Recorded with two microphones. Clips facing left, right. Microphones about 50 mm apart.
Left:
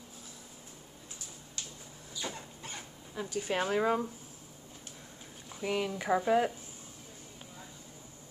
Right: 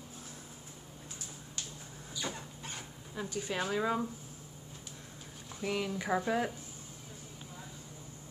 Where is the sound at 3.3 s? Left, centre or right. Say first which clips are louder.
Left 4 dB; left.